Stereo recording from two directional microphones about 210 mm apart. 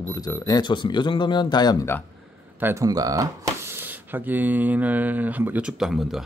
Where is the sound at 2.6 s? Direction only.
10° right (ahead or behind).